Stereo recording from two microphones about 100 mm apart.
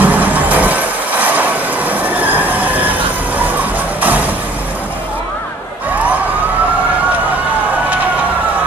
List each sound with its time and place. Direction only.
0.0 s vehicle: 15° right (ahead or behind)